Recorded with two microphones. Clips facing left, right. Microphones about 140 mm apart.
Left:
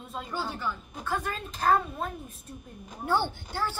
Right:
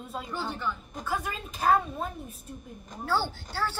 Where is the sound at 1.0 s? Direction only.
5° right (ahead or behind).